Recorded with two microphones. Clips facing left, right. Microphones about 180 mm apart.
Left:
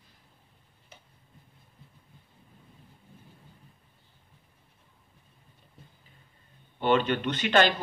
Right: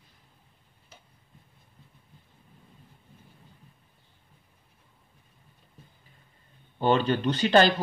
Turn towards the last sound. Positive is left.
turn(degrees=-35)  # may be behind; listen again after turning